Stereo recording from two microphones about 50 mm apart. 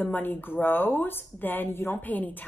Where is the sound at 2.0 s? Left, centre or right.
Left.